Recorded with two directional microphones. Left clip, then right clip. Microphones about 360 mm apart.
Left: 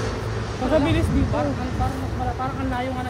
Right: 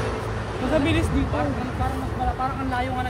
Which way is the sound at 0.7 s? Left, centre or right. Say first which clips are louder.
Left 2 dB; centre.